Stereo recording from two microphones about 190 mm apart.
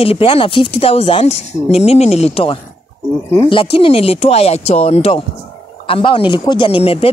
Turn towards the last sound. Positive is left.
turn(degrees=30)  # may be behind; listen again after turning